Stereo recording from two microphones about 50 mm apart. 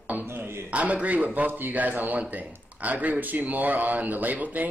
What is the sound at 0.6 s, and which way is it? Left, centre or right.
Speech, right.